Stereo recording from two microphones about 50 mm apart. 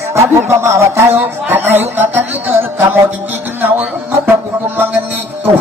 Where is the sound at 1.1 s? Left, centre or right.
Right.